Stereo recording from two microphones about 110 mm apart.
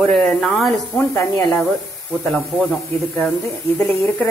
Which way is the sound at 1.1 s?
25° left (ahead or behind).